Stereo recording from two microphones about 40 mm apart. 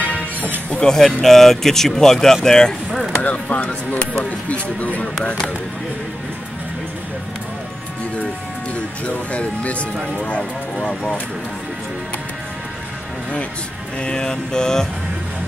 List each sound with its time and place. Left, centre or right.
0.0 s music: left
0.7 s speech: centre
3.2 s speech: left
5.2 s speech: left
8.7 s speech: left
13.9 s speech: left